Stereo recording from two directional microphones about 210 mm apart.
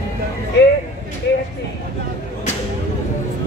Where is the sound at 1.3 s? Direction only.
55° left (ahead or behind).